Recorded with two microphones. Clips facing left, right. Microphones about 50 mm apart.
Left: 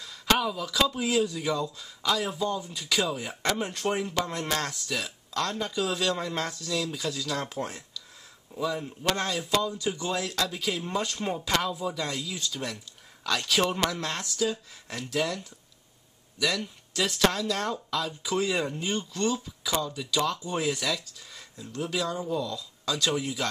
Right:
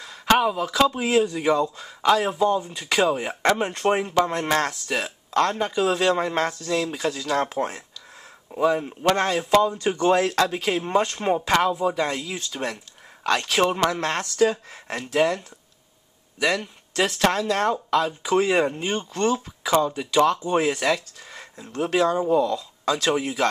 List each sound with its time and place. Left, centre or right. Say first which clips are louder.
0.0 s speech: right 6 dB; right